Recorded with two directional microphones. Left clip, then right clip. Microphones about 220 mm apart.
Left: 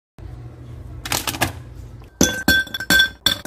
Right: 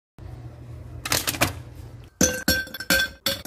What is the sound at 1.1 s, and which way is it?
Typewriter, 15° right (ahead or behind).